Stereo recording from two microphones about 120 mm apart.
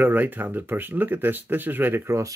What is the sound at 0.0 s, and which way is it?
Speech, 15° right (ahead or behind).